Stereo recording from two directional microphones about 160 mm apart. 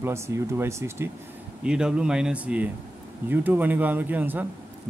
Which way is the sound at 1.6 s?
5° right (ahead or behind).